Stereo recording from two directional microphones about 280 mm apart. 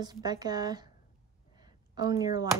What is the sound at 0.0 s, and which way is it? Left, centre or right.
Speech, centre.